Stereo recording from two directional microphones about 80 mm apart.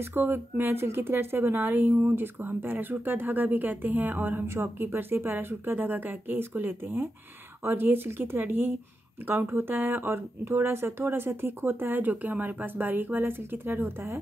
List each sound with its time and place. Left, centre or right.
0.0 s a woman's voice: right